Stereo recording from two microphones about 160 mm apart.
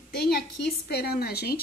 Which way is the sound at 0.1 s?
80° left.